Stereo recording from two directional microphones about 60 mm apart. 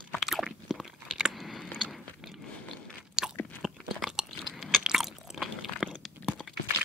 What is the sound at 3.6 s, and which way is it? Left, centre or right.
Crunch, centre.